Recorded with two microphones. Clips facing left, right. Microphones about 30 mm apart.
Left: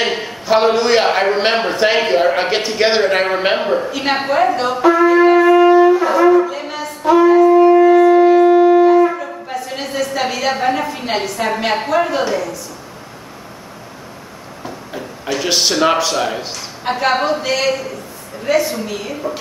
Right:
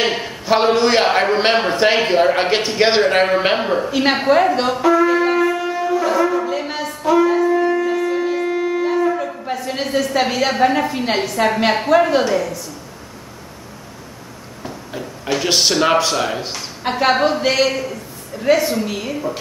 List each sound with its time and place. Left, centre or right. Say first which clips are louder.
0.0 s a man's voice: even; centre
4.8 s shofar: left 5 dB; centre
5.5 s wind instrument: left 11 dB; left
6.4 s a sound: even; centre
7.0 s shofar: left 5 dB; centre
9.2 s a sound: right 1 dB; centre
10.6 s a man's voice: right 2 dB; centre
11.9 s a man's voice: right 3 dB; centre
14.6 s a sound: left 1 dB; centre
15.2 s a man's voice: even; centre